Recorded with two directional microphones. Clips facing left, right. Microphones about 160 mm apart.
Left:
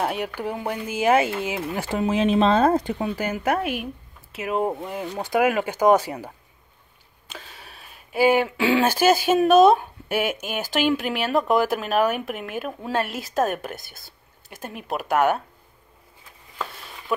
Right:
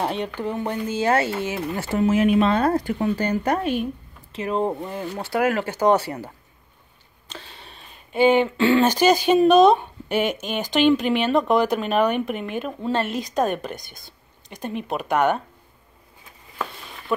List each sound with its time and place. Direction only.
0.0 s speech: 10° left (ahead or behind)